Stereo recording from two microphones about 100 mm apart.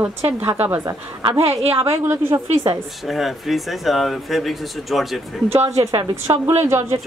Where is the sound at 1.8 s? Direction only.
30° right (ahead or behind).